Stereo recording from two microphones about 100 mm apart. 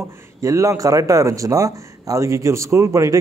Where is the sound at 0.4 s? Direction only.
30° right (ahead or behind).